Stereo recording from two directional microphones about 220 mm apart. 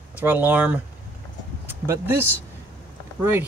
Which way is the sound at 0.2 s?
10° right (ahead or behind).